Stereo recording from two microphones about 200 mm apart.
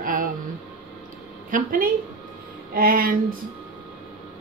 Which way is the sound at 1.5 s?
40° right (ahead or behind).